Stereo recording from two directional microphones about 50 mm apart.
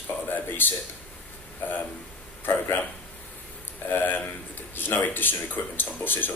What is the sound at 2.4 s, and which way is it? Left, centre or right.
Speech, left.